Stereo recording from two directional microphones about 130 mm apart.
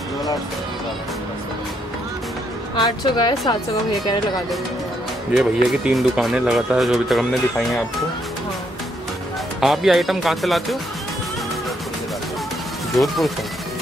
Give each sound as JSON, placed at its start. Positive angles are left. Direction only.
{"t": 2.7, "sound": "a woman's voice", "side_deg": 35}
{"t": 5.3, "sound": "speech", "side_deg": -5}
{"t": 9.6, "sound": "speech", "side_deg": 0}
{"t": 13.0, "sound": "speech", "side_deg": 0}